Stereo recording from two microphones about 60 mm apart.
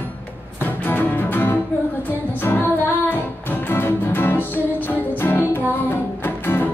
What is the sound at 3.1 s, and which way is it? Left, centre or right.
Music, left.